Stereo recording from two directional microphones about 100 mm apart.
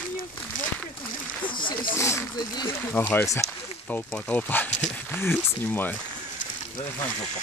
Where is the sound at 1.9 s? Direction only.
30° left (ahead or behind).